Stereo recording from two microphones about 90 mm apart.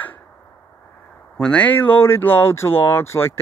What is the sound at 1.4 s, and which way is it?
Speech, 15° left (ahead or behind).